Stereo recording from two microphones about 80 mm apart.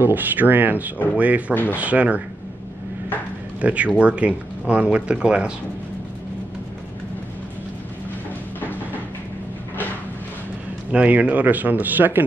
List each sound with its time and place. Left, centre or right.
0.0 s speech: right
1.5 s speech: left
1.8 s speech: centre
3.6 s speech: centre
10.9 s speech: centre